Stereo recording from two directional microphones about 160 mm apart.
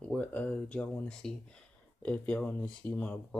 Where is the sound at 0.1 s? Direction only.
10° left (ahead or behind).